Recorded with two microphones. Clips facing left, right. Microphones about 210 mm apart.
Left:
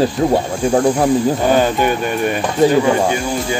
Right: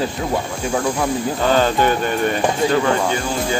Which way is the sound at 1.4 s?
15° left (ahead or behind).